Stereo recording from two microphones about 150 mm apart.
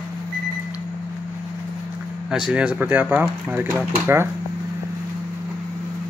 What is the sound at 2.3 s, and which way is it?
Speech, 5° right (ahead or behind).